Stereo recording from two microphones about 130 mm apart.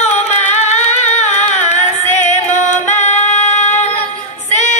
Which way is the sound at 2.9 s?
65° left (ahead or behind).